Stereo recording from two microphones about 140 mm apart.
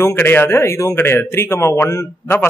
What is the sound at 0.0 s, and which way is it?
Speech, 15° left (ahead or behind).